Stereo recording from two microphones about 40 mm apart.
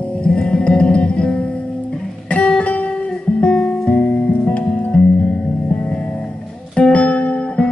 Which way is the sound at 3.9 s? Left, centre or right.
Left.